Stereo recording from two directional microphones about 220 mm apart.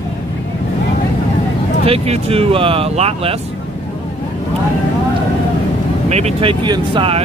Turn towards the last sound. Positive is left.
turn(degrees=-25)  # may be behind; listen again after turning